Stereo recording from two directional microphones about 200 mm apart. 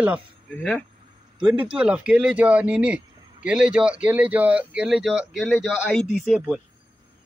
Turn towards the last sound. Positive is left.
turn(degrees=0)  # may be behind; listen again after turning